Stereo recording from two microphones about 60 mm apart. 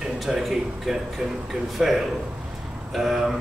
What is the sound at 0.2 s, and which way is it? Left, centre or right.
Speech, centre.